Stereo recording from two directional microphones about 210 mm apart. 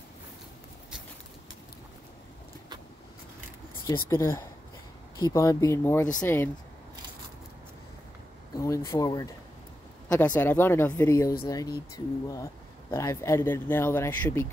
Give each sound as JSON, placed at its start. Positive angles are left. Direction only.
{"t": 3.8, "sound": "speech", "side_deg": 15}
{"t": 8.5, "sound": "speech", "side_deg": 15}
{"t": 12.9, "sound": "speech", "side_deg": 15}